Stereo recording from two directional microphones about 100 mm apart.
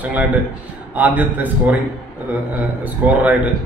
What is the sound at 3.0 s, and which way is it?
Speech, 15° right (ahead or behind).